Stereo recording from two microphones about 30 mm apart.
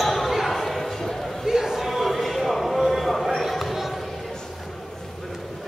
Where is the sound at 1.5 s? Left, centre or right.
Centre.